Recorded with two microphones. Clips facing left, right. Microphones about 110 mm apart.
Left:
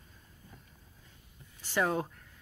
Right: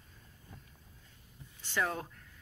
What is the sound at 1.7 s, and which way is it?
Speech, 15° left (ahead or behind).